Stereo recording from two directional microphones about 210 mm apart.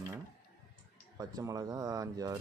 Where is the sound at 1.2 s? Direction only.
15° right (ahead or behind).